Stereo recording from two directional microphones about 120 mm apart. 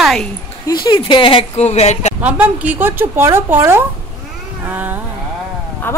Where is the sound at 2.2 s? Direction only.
15° right (ahead or behind).